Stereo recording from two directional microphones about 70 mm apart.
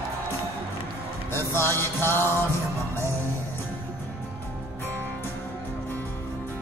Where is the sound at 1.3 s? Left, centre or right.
Left.